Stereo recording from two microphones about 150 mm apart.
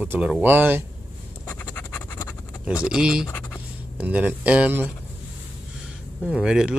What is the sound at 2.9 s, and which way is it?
Speech, 5° right (ahead or behind).